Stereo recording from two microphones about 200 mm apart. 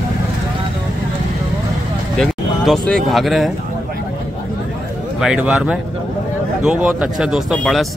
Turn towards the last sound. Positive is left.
turn(degrees=0)  # may be behind; listen again after turning